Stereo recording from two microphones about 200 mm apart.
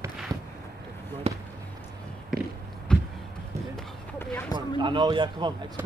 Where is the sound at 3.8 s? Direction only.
10° left (ahead or behind).